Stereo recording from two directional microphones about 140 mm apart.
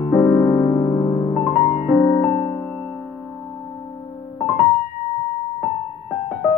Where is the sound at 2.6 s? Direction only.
Centre (ahead or behind).